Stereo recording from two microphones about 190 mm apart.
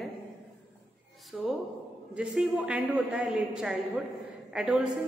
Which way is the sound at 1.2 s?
Centre (ahead or behind).